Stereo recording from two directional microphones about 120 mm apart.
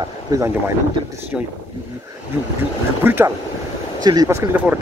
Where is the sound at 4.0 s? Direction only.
30° right (ahead or behind).